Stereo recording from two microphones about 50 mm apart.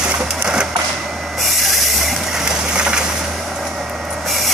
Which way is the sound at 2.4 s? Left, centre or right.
Centre.